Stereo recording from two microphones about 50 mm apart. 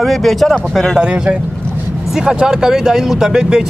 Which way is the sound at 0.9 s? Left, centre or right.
Centre.